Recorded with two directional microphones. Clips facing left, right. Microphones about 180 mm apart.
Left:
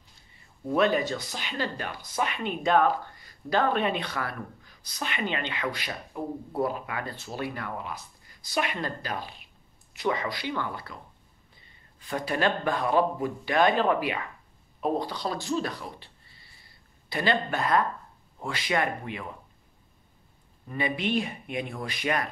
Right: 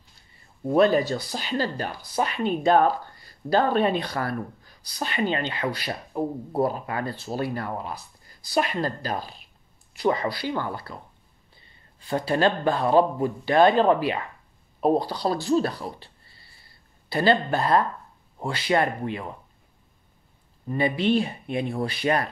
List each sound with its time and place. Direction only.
0.7 s speech: 35° right (ahead or behind)
12.0 s speech: 30° right (ahead or behind)
17.1 s speech: 35° right (ahead or behind)
20.6 s speech: 30° right (ahead or behind)